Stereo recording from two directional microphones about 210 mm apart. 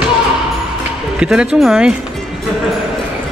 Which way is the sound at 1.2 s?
5° right (ahead or behind).